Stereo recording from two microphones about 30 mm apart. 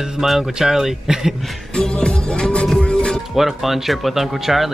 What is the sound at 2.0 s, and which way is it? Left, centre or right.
Music, left.